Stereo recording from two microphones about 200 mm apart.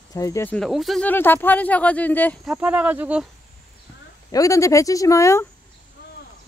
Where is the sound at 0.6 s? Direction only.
Centre (ahead or behind).